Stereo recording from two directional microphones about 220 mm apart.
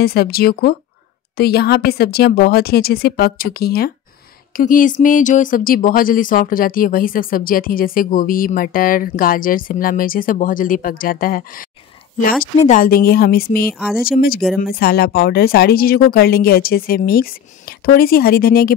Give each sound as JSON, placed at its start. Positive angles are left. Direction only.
{"t": 0.0, "sound": "speech", "side_deg": 45}
{"t": 13.7, "sound": "speech", "side_deg": -5}
{"t": 14.0, "sound": "speech", "side_deg": 45}